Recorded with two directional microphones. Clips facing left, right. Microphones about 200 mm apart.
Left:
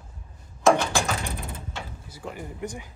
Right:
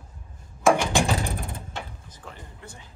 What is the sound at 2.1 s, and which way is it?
Speech, 10° left (ahead or behind).